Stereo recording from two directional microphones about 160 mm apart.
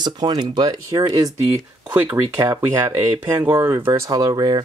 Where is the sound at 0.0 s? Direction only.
25° right (ahead or behind).